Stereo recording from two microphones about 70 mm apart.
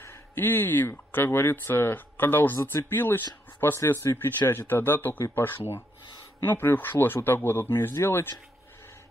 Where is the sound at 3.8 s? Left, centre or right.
Left.